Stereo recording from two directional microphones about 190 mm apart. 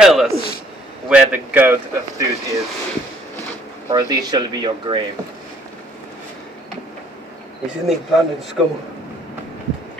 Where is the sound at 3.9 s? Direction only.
20° right (ahead or behind).